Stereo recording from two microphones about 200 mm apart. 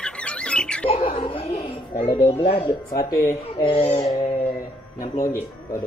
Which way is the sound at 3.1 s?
15° left (ahead or behind).